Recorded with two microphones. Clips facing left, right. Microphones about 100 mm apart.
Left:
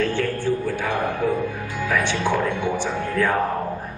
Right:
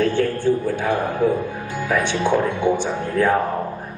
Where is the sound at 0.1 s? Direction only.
20° right (ahead or behind).